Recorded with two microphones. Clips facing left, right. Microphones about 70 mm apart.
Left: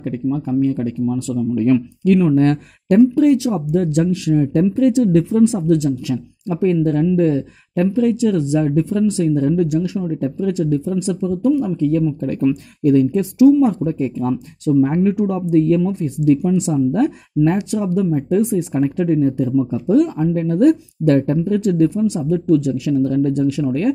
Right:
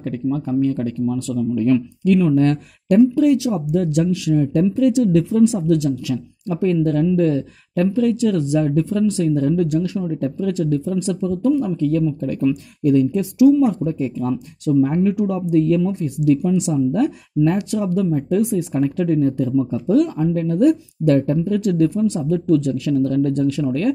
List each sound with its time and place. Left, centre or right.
0.0 s speech: centre
1.5 s speech: left
2.3 s speech: left; by 12.2 s centre
12.2 s speech: left
17.5 s speech: left
20.4 s speech: left
21.5 s speech: left